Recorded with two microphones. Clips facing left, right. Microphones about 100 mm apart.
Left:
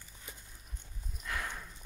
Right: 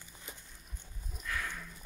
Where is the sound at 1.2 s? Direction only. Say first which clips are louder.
Even; 30° left (ahead or behind).